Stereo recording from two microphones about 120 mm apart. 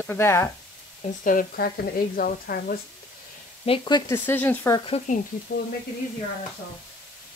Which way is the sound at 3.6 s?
45° left (ahead or behind).